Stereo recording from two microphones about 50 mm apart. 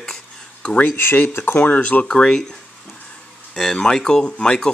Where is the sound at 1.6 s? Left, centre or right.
Left.